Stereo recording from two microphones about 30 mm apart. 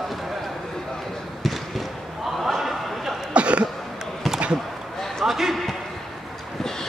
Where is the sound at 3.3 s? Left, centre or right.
Right.